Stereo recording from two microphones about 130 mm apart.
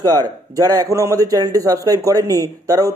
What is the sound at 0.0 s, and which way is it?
Speech, 25° right (ahead or behind).